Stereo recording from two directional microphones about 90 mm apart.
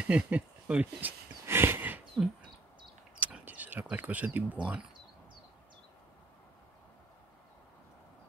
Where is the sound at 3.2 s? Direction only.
20° right (ahead or behind).